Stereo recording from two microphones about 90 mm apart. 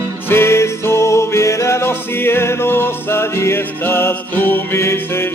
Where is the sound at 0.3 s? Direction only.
30° left (ahead or behind).